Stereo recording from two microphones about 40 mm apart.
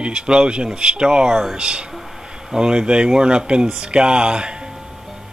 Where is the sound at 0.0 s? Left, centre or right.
Right.